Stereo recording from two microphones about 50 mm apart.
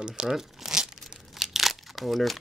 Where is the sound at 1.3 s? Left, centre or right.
Centre.